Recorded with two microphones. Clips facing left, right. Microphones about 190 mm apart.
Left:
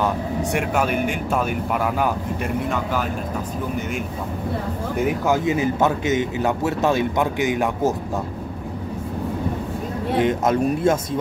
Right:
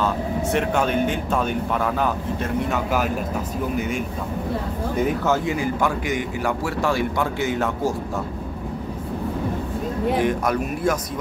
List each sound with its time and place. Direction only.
0.0 s speech: 10° left (ahead or behind)
5.0 s speech: 15° left (ahead or behind)
10.1 s speech: 20° left (ahead or behind)